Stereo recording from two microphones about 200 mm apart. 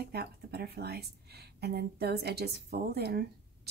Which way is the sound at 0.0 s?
55° right (ahead or behind).